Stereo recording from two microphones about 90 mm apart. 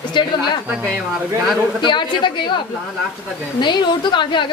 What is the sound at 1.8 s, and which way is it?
Speech, 60° left (ahead or behind).